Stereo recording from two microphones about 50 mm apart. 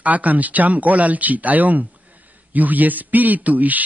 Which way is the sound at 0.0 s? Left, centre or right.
Right.